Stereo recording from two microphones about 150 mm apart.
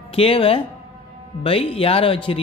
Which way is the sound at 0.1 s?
40° left (ahead or behind).